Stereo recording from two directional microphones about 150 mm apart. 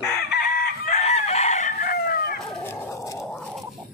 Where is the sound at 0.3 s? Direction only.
90° left.